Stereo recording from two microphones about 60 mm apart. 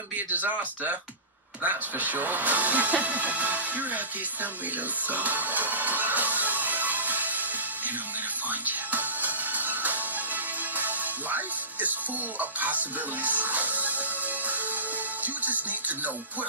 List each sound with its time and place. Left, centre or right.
0.3 s speech: right
5.0 s music: right
12.4 s speech: right
15.2 s music: right